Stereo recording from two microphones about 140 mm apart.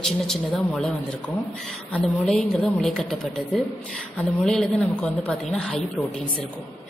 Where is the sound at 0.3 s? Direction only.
5° left (ahead or behind).